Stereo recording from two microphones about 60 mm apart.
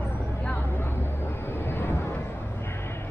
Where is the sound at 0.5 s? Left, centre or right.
Left.